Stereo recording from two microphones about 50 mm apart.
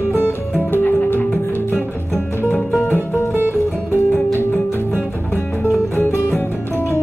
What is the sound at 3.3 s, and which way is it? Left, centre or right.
Music, right.